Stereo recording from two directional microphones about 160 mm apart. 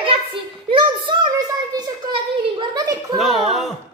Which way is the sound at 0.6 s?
30° right (ahead or behind).